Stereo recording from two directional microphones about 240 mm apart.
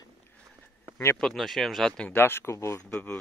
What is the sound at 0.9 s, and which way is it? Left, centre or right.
Speech, centre.